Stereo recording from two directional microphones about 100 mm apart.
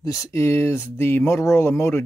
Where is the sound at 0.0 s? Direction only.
35° left (ahead or behind).